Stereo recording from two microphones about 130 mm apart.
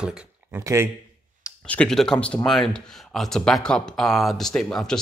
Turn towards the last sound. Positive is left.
turn(degrees=5)  # may be behind; listen again after turning